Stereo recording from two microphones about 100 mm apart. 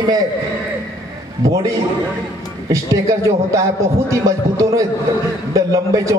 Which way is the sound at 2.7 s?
30° right (ahead or behind).